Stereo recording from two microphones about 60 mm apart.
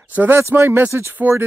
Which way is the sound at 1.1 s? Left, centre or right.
Right.